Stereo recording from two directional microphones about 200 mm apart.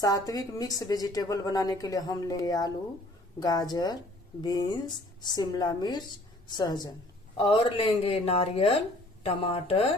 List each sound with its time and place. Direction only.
0.0 s a woman's voice: 20° left (ahead or behind)